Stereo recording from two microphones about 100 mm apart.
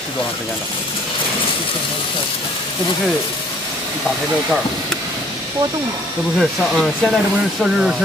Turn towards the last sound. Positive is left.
turn(degrees=-5)  # may be behind; listen again after turning